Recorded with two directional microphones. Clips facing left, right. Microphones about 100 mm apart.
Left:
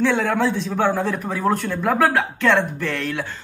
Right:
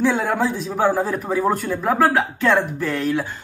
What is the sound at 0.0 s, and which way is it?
A man's voice, 10° right (ahead or behind).